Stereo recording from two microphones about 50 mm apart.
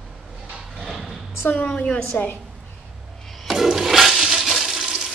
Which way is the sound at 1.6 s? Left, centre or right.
Centre.